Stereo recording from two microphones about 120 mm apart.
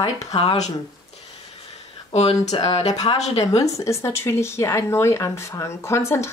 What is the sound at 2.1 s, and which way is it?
A woman's voice, 65° left (ahead or behind).